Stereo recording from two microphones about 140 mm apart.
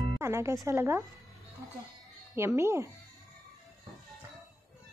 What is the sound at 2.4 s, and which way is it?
Speech, 20° right (ahead or behind).